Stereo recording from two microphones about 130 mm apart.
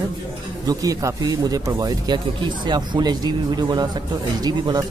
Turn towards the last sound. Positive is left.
turn(degrees=-30)  # may be behind; listen again after turning